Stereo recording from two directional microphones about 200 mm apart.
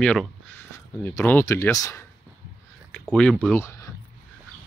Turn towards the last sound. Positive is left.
turn(degrees=0)  # may be behind; listen again after turning